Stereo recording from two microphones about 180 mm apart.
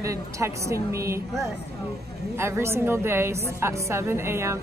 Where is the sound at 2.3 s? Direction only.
15° right (ahead or behind).